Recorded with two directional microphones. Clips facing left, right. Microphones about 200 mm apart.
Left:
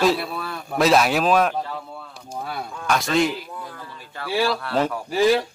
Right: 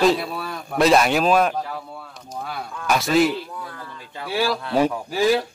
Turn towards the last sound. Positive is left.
turn(degrees=0)  # may be behind; listen again after turning